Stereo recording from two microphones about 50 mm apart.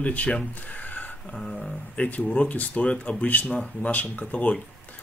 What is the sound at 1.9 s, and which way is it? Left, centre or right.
Speech, left.